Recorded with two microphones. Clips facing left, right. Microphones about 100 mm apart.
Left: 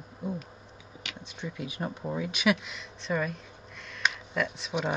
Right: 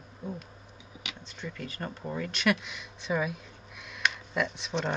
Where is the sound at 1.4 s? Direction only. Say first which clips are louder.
Left 3 dB; 10° left (ahead or behind).